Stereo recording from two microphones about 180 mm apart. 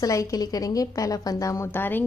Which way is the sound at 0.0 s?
20° left (ahead or behind).